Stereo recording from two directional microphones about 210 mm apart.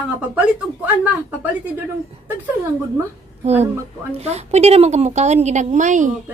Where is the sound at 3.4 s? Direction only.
30° right (ahead or behind).